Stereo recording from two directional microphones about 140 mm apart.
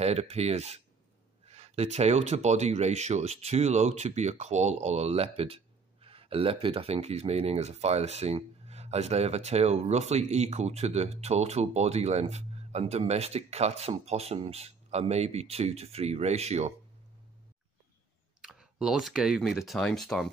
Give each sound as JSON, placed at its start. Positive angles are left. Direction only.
{"t": 0.0, "sound": "speech", "side_deg": -50}
{"t": 18.4, "sound": "speech", "side_deg": -5}